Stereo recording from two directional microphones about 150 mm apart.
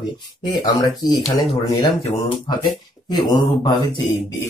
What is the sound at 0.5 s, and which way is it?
Speech, 25° left (ahead or behind).